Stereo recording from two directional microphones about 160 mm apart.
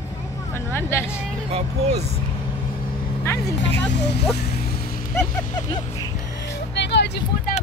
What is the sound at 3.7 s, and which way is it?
Speech, 90° left.